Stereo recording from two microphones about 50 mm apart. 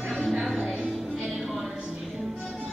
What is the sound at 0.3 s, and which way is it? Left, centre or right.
Music, centre.